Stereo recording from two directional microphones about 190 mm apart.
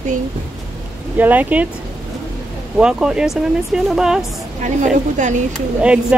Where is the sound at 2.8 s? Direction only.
5° right (ahead or behind).